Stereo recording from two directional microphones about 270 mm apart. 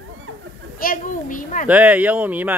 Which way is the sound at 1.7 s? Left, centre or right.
Centre.